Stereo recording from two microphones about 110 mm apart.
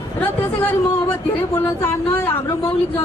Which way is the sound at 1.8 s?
20° left (ahead or behind).